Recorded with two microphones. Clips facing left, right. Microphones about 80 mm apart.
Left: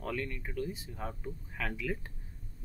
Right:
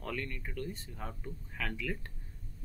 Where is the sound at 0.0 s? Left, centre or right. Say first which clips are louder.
Left 2 dB; centre.